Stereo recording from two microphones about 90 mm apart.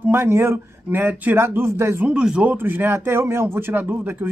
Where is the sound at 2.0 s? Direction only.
10° right (ahead or behind).